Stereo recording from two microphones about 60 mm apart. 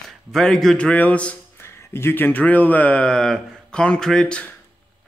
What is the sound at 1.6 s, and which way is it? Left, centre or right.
Speech, left.